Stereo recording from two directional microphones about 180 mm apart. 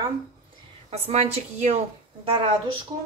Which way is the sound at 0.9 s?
35° right (ahead or behind).